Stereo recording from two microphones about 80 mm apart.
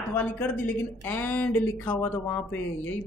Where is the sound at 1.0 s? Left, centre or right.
Left.